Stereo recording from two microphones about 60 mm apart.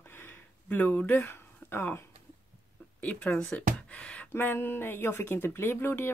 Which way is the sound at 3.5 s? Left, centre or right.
Left.